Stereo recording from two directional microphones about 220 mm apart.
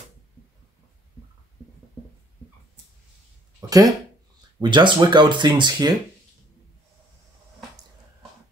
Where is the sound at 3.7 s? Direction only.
15° right (ahead or behind).